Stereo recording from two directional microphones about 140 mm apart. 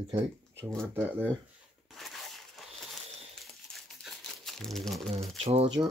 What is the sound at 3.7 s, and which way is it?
Crumpling, centre (ahead or behind).